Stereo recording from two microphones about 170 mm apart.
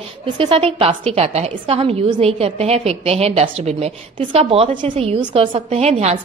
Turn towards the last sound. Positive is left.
turn(degrees=-40)  # may be behind; listen again after turning